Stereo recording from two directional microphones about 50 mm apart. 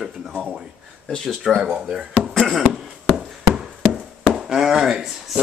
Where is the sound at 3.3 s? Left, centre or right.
Centre.